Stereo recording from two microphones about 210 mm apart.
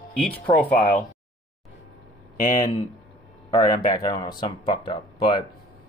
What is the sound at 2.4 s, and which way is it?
Speech, 40° left (ahead or behind).